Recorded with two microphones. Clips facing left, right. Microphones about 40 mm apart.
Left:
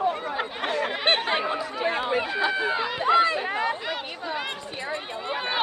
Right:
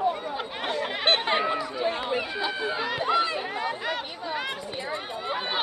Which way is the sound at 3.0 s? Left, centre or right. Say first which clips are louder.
Left 5 dB; left.